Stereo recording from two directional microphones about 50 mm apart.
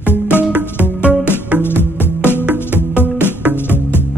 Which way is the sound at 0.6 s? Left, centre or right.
Right.